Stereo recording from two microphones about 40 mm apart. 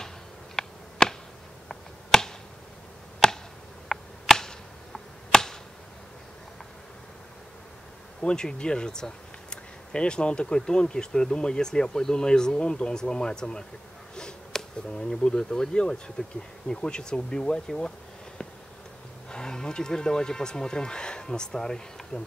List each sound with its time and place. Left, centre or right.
0.6 s a sound: centre
1.7 s finger snapping: centre
3.2 s chop: centre
8.2 s speech: left
19.2 s speech: centre